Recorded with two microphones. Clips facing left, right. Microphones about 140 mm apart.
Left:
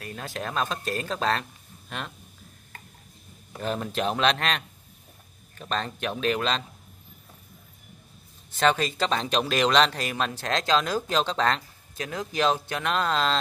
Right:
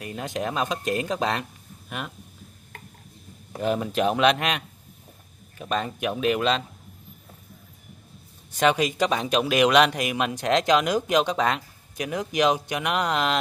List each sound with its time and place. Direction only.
0.0 s speech: 20° right (ahead or behind)
3.5 s speech: 15° right (ahead or behind)
8.5 s speech: 15° right (ahead or behind)